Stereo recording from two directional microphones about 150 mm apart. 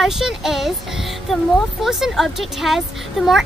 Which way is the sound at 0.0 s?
5° right (ahead or behind).